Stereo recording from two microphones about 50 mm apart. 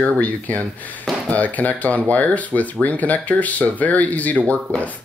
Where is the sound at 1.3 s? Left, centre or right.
Left.